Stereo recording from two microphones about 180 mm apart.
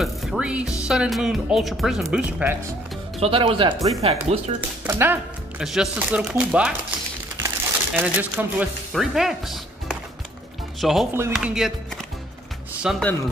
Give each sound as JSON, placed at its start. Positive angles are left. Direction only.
{"t": 0.0, "sound": "speech", "side_deg": 0}
{"t": 3.2, "sound": "speech", "side_deg": -30}
{"t": 4.8, "sound": "speech", "side_deg": -10}
{"t": 7.3, "sound": "crumpling", "side_deg": -10}
{"t": 8.9, "sound": "speech", "side_deg": 0}